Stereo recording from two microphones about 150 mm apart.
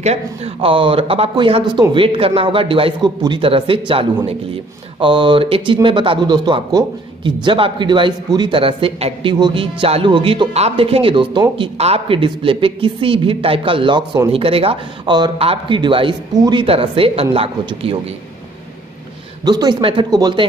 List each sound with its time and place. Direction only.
0.0 s speech: 40° right (ahead or behind); by 16.6 s 25° right (ahead or behind)
16.6 s speech: 40° right (ahead or behind)
19.4 s speech: 25° right (ahead or behind)